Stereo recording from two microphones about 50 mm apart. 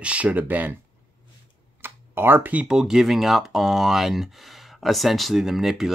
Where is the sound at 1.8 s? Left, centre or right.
Right.